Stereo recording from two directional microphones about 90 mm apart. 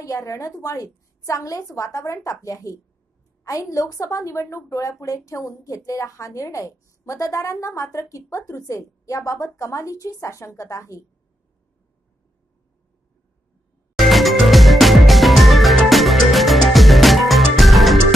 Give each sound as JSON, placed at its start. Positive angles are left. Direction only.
{"t": 0.0, "sound": "a woman's voice", "side_deg": 35}
{"t": 13.9, "sound": "music", "side_deg": 0}